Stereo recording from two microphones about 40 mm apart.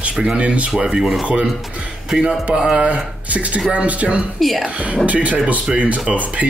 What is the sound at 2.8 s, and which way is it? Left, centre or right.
Speech, right.